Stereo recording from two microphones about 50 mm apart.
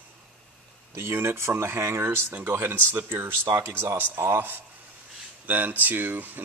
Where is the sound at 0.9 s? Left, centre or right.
Right.